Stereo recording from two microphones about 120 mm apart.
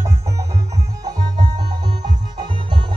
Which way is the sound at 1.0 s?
35° right (ahead or behind).